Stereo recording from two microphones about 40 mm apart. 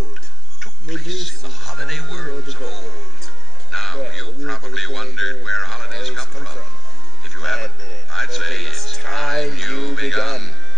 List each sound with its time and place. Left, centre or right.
0.6 s speech: centre
3.7 s a sound: centre
7.2 s music: centre